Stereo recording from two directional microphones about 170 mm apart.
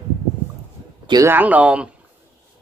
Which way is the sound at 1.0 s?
25° right (ahead or behind).